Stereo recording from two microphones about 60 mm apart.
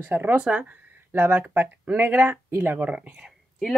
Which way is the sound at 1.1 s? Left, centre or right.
Right.